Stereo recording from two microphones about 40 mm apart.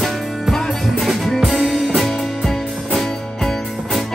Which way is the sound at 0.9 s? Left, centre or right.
Centre.